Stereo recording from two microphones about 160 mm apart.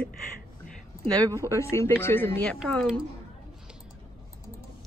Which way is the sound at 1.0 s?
25° right (ahead or behind).